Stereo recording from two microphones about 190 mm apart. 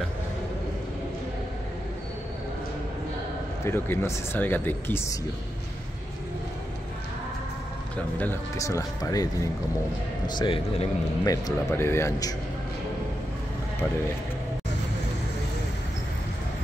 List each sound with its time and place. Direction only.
3.6 s speech: 10° left (ahead or behind)
8.2 s a man's voice: 15° left (ahead or behind); by 10.9 s 30° left (ahead or behind)
11.2 s speech: 15° left (ahead or behind)